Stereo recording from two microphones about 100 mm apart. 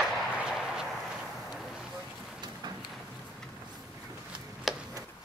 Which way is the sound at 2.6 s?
45° right (ahead or behind).